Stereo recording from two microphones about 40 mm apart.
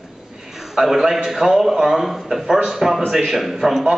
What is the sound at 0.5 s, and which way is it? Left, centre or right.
A man's voice, centre.